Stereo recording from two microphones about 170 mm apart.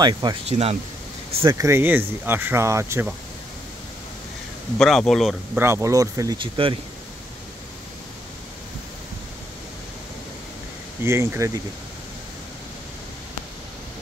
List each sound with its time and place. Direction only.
0.0 s speech: 25° right (ahead or behind)
0.5 s speech: 40° right (ahead or behind)
1.4 s speech: 25° right (ahead or behind)
1.7 s speech: 10° right (ahead or behind)
4.7 s speech: centre (ahead or behind)
5.6 s speech: 15° right (ahead or behind)
11.1 s speech: 15° right (ahead or behind)